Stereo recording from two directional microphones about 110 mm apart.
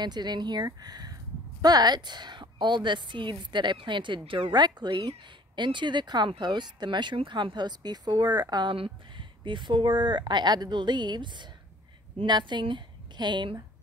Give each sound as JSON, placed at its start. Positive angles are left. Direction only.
{"t": 0.0, "sound": "a woman's voice", "side_deg": -40}
{"t": 8.7, "sound": "a woman's voice", "side_deg": -55}